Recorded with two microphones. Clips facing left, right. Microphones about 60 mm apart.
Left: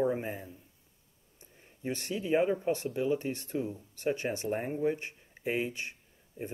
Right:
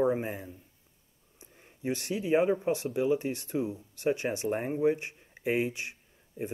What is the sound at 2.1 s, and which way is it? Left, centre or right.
Speech, right.